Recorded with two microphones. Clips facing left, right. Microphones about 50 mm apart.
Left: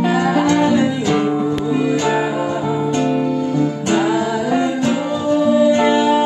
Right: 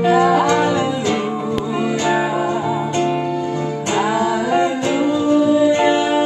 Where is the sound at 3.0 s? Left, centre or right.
Right.